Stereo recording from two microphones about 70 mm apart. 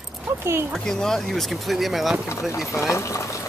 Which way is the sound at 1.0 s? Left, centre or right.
Centre.